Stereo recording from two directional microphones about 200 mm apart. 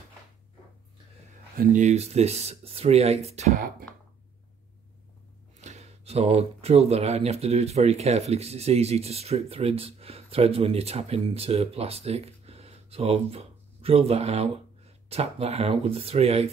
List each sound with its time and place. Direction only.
1.6 s speech: 40° right (ahead or behind)
5.6 s speech: 35° right (ahead or behind)